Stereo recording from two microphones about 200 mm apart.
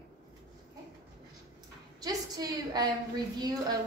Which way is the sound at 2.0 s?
20° right (ahead or behind).